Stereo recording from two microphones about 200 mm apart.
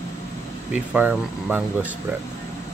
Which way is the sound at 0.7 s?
5° right (ahead or behind).